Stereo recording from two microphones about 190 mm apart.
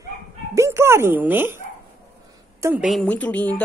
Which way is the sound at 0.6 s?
15° right (ahead or behind).